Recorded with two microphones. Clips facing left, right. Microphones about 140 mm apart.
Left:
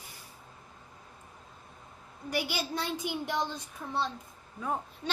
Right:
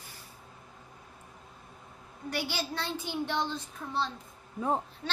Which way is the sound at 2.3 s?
10° left (ahead or behind).